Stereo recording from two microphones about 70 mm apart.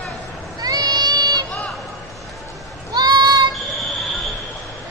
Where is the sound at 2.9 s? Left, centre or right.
Right.